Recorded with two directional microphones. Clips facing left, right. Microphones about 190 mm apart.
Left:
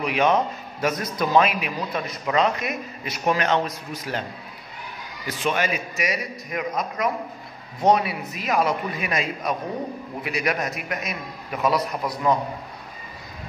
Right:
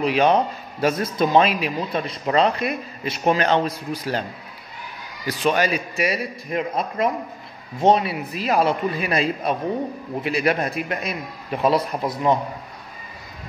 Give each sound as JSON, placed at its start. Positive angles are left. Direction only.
{"t": 0.0, "sound": "speech", "side_deg": -35}
{"t": 5.4, "sound": "a man's voice", "side_deg": -35}